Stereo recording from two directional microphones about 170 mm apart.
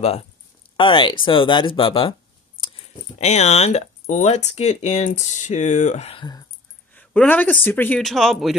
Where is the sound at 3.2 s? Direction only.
40° left (ahead or behind).